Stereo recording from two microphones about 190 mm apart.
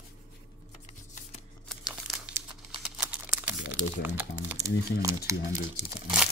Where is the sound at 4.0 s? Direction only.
10° right (ahead or behind).